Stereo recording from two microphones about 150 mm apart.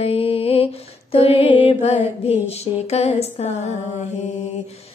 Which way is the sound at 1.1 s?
40° left (ahead or behind).